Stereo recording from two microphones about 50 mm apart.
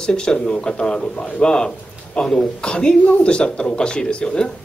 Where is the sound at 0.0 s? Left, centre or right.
Centre.